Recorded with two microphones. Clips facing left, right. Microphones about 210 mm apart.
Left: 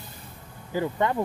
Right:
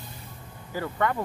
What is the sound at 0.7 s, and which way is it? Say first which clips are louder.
Speech: left 2 dB; 20° left (ahead or behind).